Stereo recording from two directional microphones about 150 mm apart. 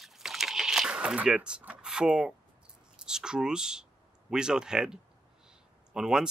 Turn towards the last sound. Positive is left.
turn(degrees=-5)  # may be behind; listen again after turning